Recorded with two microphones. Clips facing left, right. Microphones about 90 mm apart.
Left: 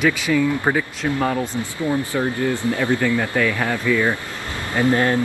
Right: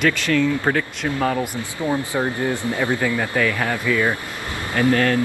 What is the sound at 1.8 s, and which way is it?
Speech, 20° right (ahead or behind).